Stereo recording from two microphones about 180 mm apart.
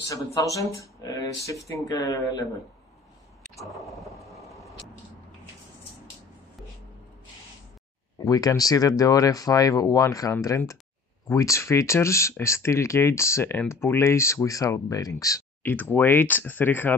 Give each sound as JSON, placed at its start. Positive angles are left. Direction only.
{"t": 0.1, "sound": "speech", "side_deg": 20}
{"t": 3.5, "sound": "a sound", "side_deg": 0}
{"t": 8.2, "sound": "speech", "side_deg": 20}